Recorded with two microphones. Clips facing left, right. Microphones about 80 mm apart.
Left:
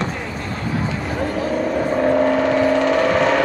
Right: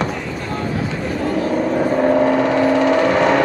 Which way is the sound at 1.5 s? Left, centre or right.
Centre.